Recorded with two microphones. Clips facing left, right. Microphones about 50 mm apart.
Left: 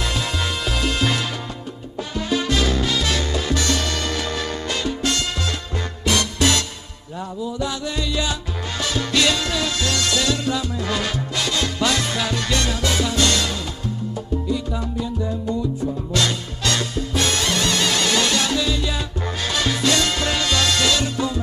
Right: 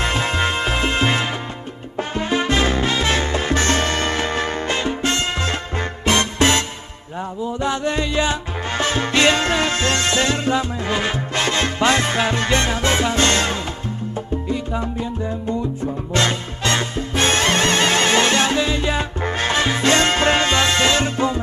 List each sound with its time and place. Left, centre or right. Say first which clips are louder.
0.0 s music: right 5 dB; right
2.0 s salsa music: right 3 dB; right
15.8 s music: right 2 dB; right